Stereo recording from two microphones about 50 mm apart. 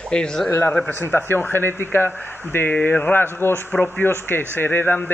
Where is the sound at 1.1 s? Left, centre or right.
Left.